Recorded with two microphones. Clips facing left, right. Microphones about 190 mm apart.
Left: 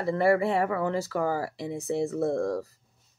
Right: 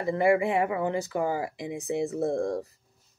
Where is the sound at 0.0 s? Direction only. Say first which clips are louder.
Even; 15° right (ahead or behind).